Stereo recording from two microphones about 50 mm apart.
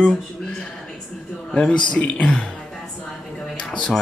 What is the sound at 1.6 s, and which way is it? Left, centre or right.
Speech, centre.